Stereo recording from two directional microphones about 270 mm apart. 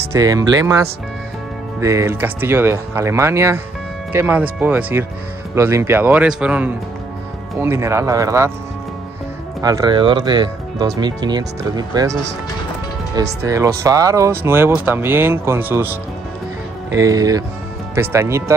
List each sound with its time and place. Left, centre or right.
0.1 s speech: centre
9.6 s speech: centre